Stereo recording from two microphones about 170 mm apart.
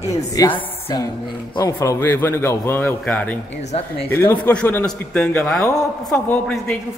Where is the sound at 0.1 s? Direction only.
20° left (ahead or behind).